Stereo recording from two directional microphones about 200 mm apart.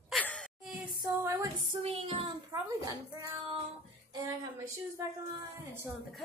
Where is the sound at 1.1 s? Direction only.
15° right (ahead or behind).